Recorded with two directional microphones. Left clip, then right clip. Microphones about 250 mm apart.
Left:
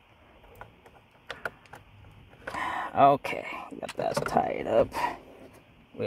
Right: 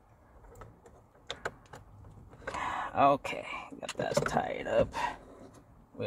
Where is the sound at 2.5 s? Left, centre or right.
Left.